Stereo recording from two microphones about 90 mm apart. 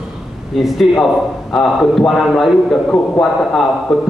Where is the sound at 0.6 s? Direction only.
Centre (ahead or behind).